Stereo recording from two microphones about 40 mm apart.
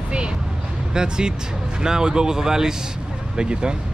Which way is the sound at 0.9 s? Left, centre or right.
Centre.